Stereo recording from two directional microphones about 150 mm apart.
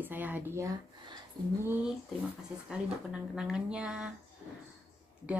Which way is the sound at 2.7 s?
5° right (ahead or behind).